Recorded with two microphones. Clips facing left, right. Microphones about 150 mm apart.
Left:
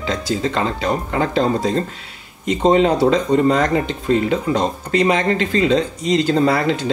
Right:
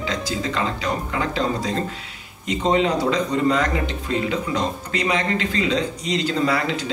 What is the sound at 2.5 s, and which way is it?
Speech, 40° left (ahead or behind).